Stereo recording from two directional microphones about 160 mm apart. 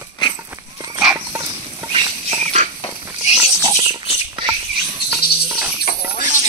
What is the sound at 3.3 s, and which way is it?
Pig, 5° right (ahead or behind).